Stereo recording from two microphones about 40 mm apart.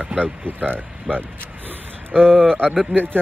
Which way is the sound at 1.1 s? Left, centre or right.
Right.